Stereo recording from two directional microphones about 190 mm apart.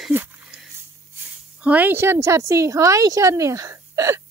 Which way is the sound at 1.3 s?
5° right (ahead or behind).